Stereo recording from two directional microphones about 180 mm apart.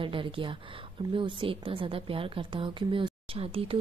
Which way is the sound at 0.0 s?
30° right (ahead or behind).